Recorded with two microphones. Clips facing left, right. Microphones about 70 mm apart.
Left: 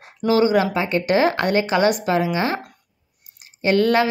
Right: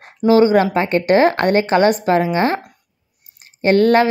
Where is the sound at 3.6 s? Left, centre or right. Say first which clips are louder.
Right 4 dB; right.